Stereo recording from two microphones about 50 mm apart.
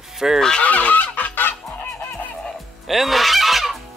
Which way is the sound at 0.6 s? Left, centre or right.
Left.